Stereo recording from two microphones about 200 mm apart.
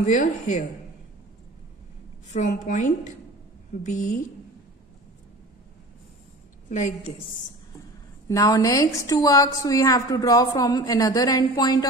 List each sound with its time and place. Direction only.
0.0 s a woman's voice: 35° left (ahead or behind)
2.3 s a woman's voice: 35° left (ahead or behind)
6.7 s a woman's voice: 35° left (ahead or behind)
8.3 s a woman's voice: 15° left (ahead or behind)